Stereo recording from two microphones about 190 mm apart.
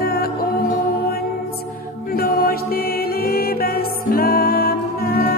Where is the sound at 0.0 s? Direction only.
55° left (ahead or behind).